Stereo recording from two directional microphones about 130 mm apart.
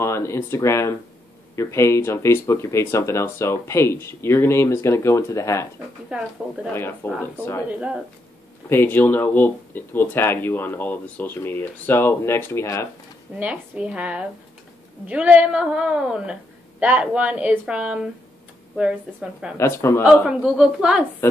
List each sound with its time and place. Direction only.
0.0 s speech: 20° left (ahead or behind)
6.0 s a woman's voice: 5° right (ahead or behind)
6.7 s speech: 15° left (ahead or behind)
7.6 s a woman's voice: 10° right (ahead or behind)
8.6 s speech: 15° left (ahead or behind)
13.4 s a woman's voice: 10° right (ahead or behind)
19.5 s speech: 20° left (ahead or behind)
20.2 s a woman's voice: 5° right (ahead or behind)
21.2 s a woman's voice: 20° left (ahead or behind)